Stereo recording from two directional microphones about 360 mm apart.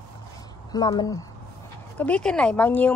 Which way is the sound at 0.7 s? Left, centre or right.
Centre.